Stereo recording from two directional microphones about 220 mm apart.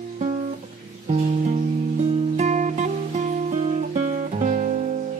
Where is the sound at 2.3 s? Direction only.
30° right (ahead or behind).